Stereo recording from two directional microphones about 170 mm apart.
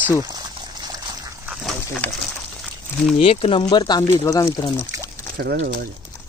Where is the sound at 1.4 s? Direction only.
5° right (ahead or behind).